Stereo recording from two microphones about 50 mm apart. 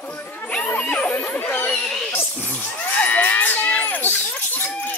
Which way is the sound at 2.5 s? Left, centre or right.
Centre.